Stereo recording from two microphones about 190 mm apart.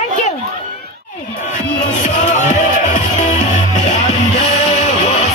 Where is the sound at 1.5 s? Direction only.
40° left (ahead or behind).